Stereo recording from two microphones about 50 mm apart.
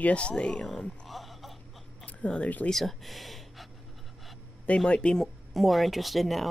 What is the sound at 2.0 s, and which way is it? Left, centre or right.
Speech, left.